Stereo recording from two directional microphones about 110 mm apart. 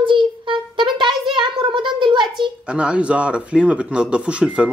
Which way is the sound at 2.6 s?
10° right (ahead or behind).